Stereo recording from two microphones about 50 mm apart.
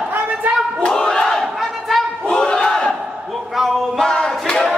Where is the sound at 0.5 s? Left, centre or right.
Right.